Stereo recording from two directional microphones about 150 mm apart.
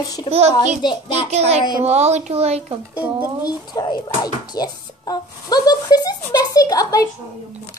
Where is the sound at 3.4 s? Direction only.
25° left (ahead or behind).